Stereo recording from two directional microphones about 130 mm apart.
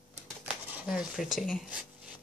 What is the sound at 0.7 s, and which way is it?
A woman's voice, 5° right (ahead or behind).